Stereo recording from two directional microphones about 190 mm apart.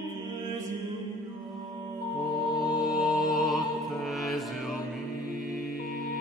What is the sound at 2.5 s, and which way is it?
Music, 20° left (ahead or behind).